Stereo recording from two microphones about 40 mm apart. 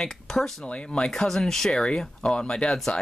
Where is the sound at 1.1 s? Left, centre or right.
Centre.